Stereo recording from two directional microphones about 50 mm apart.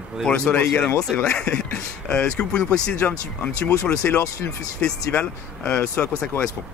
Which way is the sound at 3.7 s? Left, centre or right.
Left.